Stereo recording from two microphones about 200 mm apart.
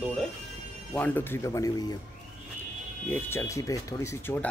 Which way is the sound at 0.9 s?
10° left (ahead or behind).